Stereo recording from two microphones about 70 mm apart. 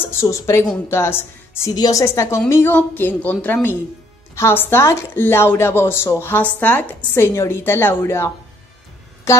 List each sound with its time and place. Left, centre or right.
0.0 s speech: left
1.8 s a woman's voice: left
2.5 s speech: left
7.3 s speech: left